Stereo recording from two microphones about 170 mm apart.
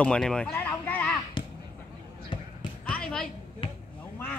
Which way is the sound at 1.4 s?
30° left (ahead or behind).